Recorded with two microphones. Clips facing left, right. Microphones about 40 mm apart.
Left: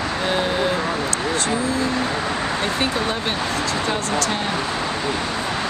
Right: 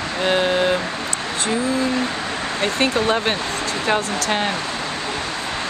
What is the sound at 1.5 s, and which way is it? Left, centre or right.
Speech, centre.